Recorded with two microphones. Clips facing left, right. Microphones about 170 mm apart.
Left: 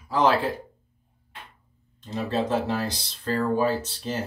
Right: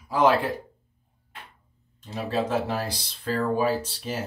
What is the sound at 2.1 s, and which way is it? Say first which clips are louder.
Speech: left 1 dB; 10° right (ahead or behind).